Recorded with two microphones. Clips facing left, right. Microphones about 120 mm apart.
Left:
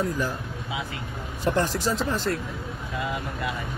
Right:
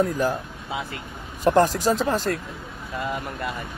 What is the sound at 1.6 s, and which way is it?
Speech, 45° right (ahead or behind).